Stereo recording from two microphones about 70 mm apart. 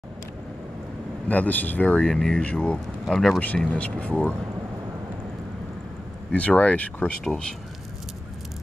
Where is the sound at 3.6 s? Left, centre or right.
Centre.